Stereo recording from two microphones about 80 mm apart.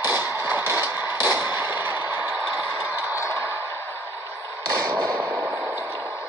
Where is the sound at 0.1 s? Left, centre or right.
Right.